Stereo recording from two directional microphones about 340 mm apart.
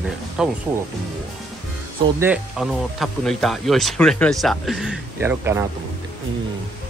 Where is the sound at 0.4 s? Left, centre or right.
Centre.